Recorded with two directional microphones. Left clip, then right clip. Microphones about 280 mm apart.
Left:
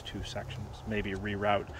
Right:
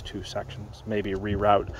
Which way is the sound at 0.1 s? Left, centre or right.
Centre.